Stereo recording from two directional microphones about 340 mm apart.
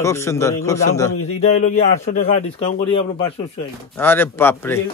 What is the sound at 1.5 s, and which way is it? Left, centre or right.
Speech, left.